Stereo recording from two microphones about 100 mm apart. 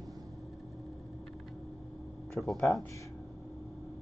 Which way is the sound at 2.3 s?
5° left (ahead or behind).